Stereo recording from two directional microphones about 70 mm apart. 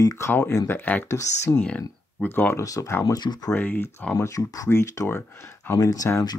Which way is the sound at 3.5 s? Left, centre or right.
Left.